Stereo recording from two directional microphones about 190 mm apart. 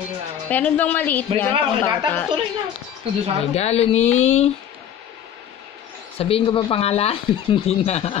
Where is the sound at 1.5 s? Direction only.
25° right (ahead or behind).